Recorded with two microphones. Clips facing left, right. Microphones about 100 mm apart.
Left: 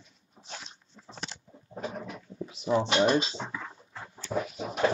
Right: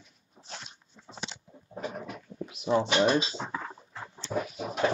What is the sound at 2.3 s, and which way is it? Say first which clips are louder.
Writing: even; 5° right (ahead or behind).